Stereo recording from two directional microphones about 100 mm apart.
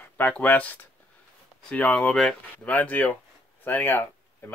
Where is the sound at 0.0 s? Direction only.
15° left (ahead or behind).